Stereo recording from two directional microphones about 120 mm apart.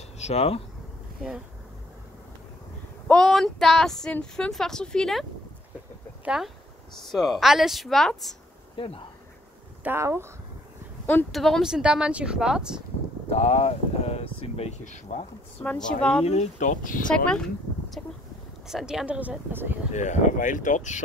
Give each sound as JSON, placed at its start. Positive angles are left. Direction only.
{"t": 0.2, "sound": "speech", "side_deg": 60}
{"t": 3.1, "sound": "speech", "side_deg": 5}
{"t": 6.2, "sound": "speech", "side_deg": -5}
{"t": 8.7, "sound": "speech", "side_deg": 50}
{"t": 9.8, "sound": "speech", "side_deg": -20}
{"t": 11.3, "sound": "speech", "side_deg": 0}
{"t": 13.3, "sound": "speech", "side_deg": 65}
{"t": 15.6, "sound": "speech", "side_deg": 10}
{"t": 16.3, "sound": "speech", "side_deg": 80}
{"t": 17.3, "sound": "a sound", "side_deg": 5}
{"t": 18.7, "sound": "speech", "side_deg": -5}
{"t": 19.9, "sound": "speech", "side_deg": 85}